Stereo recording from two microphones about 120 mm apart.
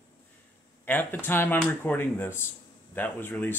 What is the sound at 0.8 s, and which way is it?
Speech, 15° left (ahead or behind).